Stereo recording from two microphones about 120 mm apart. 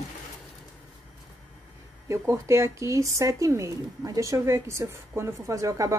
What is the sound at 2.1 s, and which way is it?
Speech, 25° right (ahead or behind).